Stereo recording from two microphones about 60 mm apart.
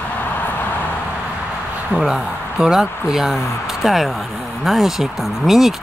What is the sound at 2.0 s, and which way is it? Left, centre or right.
Speech, centre.